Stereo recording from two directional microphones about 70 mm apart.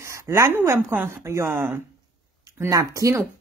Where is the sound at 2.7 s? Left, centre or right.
Right.